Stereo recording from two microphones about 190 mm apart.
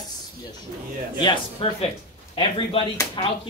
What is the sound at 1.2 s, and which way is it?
Speech, 25° left (ahead or behind).